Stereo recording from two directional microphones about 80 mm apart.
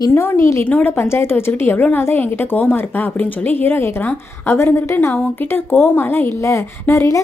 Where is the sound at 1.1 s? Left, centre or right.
Left.